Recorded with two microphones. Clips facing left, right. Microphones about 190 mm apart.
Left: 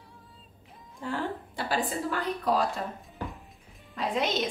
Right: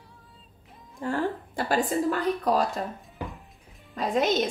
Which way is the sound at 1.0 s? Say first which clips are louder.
Right 5 dB; 50° right (ahead or behind).